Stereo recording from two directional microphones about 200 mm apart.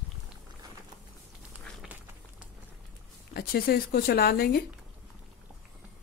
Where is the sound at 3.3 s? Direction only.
50° left (ahead or behind).